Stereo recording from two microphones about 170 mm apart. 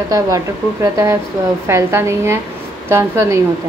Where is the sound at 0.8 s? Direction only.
20° right (ahead or behind).